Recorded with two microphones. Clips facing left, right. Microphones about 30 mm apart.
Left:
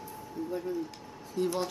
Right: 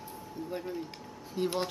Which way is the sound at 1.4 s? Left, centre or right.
Right.